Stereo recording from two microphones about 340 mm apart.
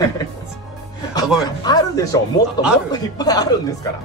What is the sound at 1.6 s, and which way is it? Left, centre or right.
Speech, centre.